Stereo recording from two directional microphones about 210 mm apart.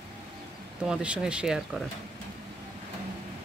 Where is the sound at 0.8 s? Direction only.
5° right (ahead or behind).